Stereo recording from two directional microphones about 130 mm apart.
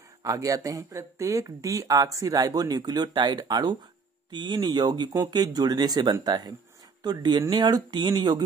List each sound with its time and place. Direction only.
0.2 s speech: 25° right (ahead or behind)